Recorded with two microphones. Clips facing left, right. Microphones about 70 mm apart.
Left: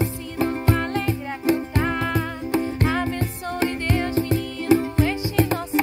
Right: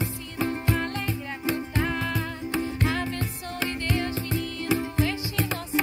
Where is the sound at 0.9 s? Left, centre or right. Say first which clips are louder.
Left 6 dB; left.